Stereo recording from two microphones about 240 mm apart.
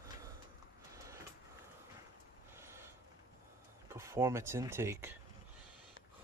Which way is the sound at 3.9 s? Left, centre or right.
Centre.